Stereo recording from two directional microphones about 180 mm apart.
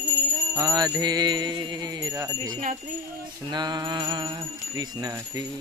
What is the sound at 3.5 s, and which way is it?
Music, 25° right (ahead or behind).